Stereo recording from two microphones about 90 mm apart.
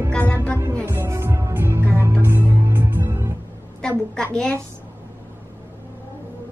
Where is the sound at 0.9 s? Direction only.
30° right (ahead or behind).